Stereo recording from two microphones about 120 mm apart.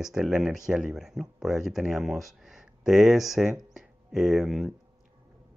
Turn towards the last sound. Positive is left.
turn(degrees=-5)  # may be behind; listen again after turning